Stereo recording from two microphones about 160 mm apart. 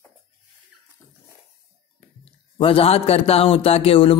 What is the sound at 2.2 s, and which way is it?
A man's voice, 35° left (ahead or behind).